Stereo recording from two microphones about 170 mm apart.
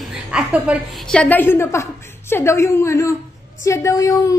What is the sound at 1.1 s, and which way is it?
A woman's voice, 10° left (ahead or behind).